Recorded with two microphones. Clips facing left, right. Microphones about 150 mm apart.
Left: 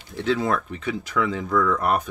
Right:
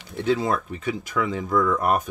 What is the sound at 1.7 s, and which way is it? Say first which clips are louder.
Speech: even; 50° right (ahead or behind).